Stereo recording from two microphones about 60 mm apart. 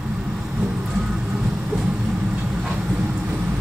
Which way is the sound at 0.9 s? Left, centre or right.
Centre.